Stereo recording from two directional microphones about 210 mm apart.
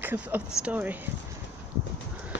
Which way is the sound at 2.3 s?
60° left (ahead or behind).